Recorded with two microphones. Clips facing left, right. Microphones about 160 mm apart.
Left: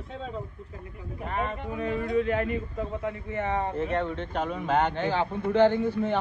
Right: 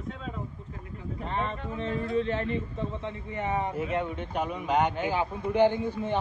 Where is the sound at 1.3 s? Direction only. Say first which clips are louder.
Left 2 dB; 30° right (ahead or behind).